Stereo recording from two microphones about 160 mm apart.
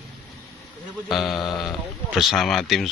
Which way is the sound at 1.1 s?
Centre (ahead or behind).